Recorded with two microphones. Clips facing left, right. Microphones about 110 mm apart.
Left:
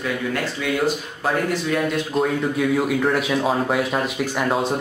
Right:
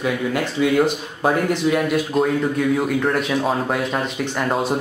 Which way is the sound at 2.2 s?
Centre (ahead or behind).